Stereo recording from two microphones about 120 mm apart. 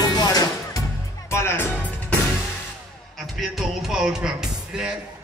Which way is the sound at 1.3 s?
20° left (ahead or behind).